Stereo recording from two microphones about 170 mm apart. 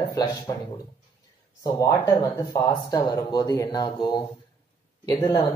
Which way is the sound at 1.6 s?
15° left (ahead or behind).